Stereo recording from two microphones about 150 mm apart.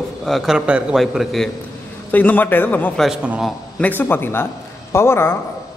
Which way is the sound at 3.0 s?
5° right (ahead or behind).